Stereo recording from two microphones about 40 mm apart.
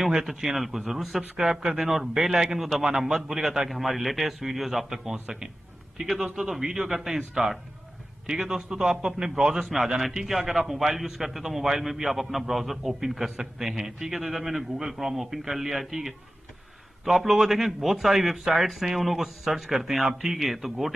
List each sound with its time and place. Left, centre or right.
0.1 s a man's voice: centre
1.4 s speech: centre
1.9 s a man's voice: centre
6.0 s a man's voice: centre